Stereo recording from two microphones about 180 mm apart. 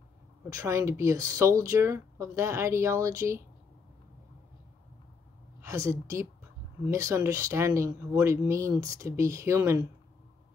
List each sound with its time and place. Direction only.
0.5 s speech: 15° right (ahead or behind)
5.6 s a woman's voice: 15° right (ahead or behind)